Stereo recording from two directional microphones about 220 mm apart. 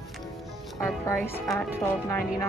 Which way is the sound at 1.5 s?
10° left (ahead or behind).